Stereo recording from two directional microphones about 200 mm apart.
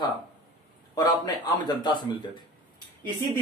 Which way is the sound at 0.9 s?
20° left (ahead or behind).